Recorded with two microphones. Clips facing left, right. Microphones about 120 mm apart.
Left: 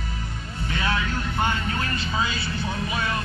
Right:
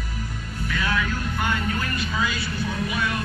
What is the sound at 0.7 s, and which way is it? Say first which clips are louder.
Speech: even; 25° left (ahead or behind).